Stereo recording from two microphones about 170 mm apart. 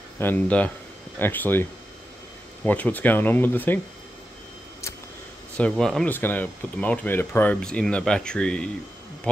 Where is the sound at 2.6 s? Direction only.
10° left (ahead or behind).